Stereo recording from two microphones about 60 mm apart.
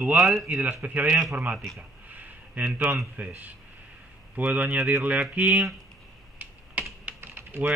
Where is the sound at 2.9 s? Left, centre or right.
Right.